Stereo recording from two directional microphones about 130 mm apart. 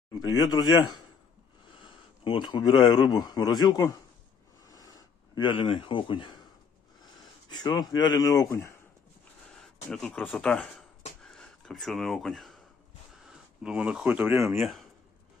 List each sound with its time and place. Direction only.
0.2 s a man's voice: 30° left (ahead or behind)
2.2 s a man's voice: 40° left (ahead or behind)
4.6 s a sound: 25° left (ahead or behind)
7.6 s speech: 30° left (ahead or behind)
9.6 s speech: 5° left (ahead or behind); by 14.6 s 20° right (ahead or behind)
14.6 s speech: centre (ahead or behind)